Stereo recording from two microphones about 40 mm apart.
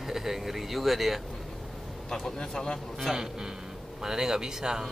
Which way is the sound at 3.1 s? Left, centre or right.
Centre.